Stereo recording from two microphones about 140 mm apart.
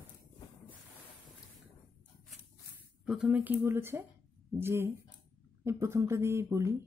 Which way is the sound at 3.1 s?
10° right (ahead or behind).